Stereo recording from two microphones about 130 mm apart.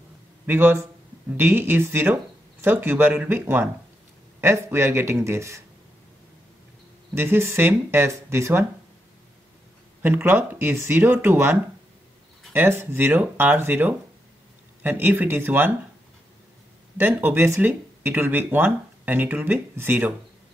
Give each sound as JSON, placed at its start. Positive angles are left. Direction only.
{"t": 0.5, "sound": "speech", "side_deg": -15}
{"t": 7.2, "sound": "speech", "side_deg": -20}
{"t": 10.0, "sound": "speech", "side_deg": -15}
{"t": 12.5, "sound": "speech", "side_deg": -20}
{"t": 16.9, "sound": "speech", "side_deg": -15}